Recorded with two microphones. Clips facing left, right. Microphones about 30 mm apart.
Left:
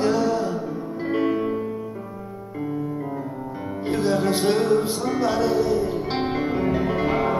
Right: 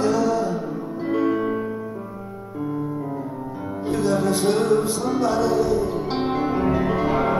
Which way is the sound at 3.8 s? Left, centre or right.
Left.